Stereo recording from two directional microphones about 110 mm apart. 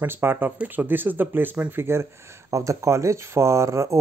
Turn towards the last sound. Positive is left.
turn(degrees=-25)  # may be behind; listen again after turning